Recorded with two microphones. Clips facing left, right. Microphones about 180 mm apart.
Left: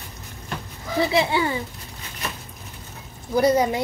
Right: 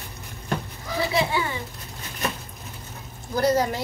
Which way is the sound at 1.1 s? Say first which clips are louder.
Left 2 dB; 25° left (ahead or behind).